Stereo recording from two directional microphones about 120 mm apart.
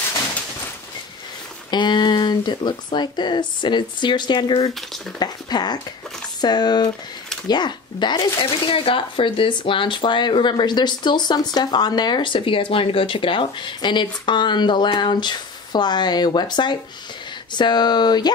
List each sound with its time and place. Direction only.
1.7 s speech: 40° left (ahead or behind)